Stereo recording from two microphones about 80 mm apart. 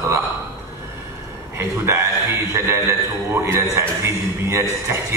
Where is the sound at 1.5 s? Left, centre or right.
Right.